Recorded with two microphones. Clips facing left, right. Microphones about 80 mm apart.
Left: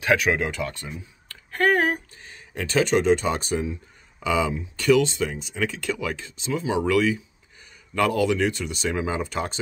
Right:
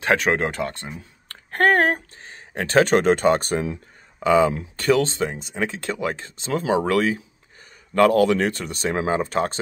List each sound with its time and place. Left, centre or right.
0.0 s speech: right
1.3 s a sound: right
2.2 s speech: right